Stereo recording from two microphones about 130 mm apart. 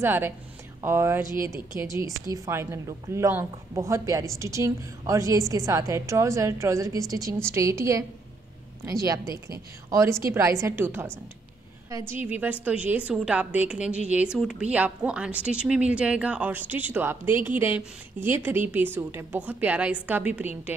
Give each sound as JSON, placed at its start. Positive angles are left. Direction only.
{"t": 0.0, "sound": "a woman's voice", "side_deg": -15}
{"t": 12.1, "sound": "a woman's voice", "side_deg": -15}